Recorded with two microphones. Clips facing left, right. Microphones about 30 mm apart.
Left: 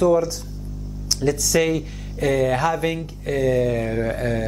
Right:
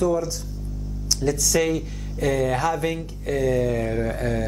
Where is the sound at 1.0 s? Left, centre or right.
Centre.